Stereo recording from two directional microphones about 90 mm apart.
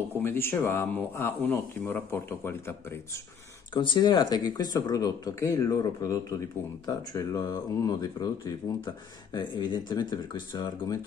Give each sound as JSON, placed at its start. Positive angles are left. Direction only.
{"t": 0.2, "sound": "speech", "side_deg": 25}
{"t": 3.7, "sound": "speech", "side_deg": 60}
{"t": 10.5, "sound": "speech", "side_deg": 35}